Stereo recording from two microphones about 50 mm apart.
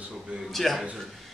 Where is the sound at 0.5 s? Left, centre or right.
Centre.